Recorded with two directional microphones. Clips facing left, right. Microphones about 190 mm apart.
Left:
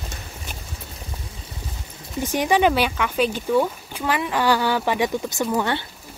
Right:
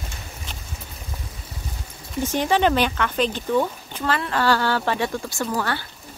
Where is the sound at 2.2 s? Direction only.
15° left (ahead or behind).